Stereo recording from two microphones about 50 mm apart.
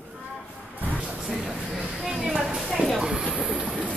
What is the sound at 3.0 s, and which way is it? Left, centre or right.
Train, centre.